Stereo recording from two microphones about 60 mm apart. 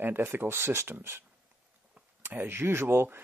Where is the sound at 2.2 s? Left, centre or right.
Right.